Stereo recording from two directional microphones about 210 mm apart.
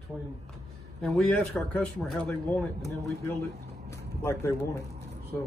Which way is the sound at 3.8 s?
15° left (ahead or behind).